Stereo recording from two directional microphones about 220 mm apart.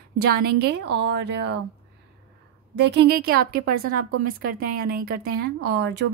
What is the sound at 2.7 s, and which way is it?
Speech, 50° right (ahead or behind).